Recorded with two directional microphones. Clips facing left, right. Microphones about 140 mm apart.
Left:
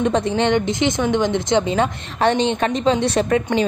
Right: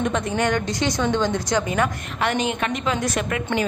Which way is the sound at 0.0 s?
30° left (ahead or behind).